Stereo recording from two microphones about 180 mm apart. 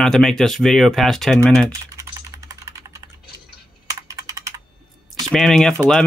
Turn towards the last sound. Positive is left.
turn(degrees=0)  # may be behind; listen again after turning